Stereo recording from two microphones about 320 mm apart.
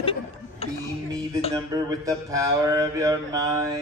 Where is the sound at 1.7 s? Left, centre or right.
Centre.